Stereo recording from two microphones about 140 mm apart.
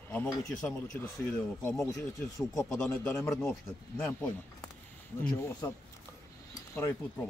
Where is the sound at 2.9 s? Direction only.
5° left (ahead or behind).